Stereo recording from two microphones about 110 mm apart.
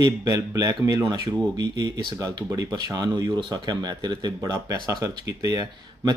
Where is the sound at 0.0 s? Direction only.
35° right (ahead or behind).